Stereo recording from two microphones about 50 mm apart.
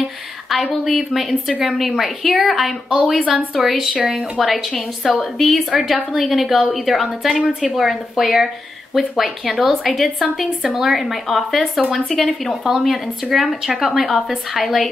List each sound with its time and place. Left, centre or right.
0.0 s a sound: centre
1.6 s a woman's voice: centre
3.9 s a woman's voice: centre
4.4 s a woman's voice: centre
7.1 s a woman's voice: centre
7.7 s a woman's voice: centre
12.6 s a woman's voice: centre